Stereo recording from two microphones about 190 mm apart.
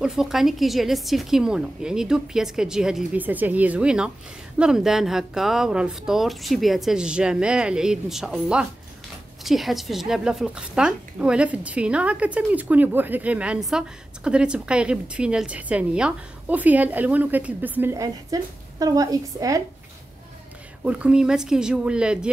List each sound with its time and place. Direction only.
0.0 s speech: centre (ahead or behind); by 19.6 s 20° right (ahead or behind)
20.8 s speech: 5° right (ahead or behind)